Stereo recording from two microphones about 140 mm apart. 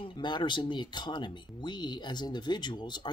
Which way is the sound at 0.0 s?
35° left (ahead or behind).